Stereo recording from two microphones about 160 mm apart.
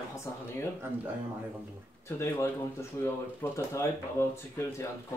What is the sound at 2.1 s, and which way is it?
Speech, 15° left (ahead or behind).